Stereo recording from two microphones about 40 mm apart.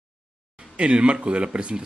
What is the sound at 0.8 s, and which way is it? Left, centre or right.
Speech, right.